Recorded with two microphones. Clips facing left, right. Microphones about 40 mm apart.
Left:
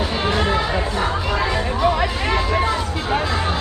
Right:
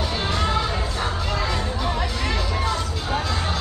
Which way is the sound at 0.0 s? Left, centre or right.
Left.